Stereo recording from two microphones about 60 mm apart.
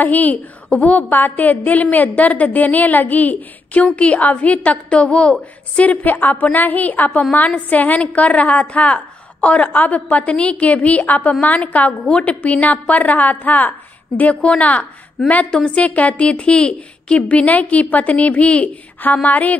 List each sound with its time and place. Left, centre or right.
0.0 s a woman's voice: left
5.9 s a woman's voice: left